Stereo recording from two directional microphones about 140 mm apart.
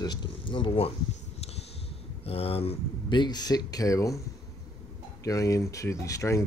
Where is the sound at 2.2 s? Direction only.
45° left (ahead or behind); by 4.2 s 25° left (ahead or behind).